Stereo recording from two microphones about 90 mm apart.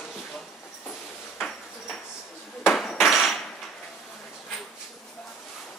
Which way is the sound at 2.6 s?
Centre (ahead or behind).